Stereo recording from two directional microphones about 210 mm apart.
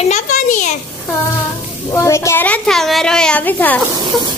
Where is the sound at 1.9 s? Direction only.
15° left (ahead or behind).